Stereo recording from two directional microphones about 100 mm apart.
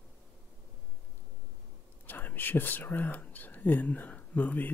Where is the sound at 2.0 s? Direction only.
20° left (ahead or behind).